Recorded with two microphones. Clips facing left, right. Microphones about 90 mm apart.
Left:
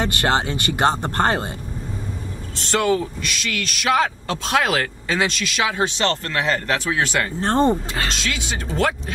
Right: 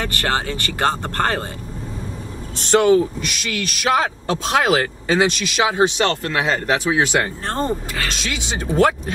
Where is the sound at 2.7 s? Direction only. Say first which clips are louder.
Right 6 dB; 25° right (ahead or behind).